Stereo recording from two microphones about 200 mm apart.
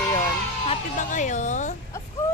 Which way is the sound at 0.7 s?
40° left (ahead or behind).